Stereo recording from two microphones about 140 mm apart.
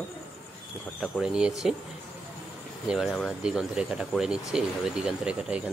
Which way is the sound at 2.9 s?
5° right (ahead or behind).